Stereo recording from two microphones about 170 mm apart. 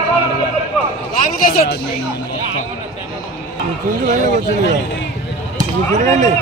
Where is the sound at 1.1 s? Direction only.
55° left (ahead or behind).